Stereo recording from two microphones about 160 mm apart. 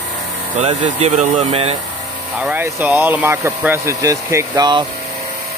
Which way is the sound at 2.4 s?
10° right (ahead or behind).